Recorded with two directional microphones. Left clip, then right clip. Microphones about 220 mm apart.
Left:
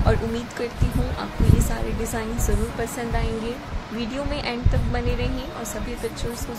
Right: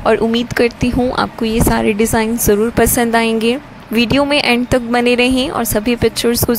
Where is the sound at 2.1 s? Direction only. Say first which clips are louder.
Right 14 dB; 45° right (ahead or behind).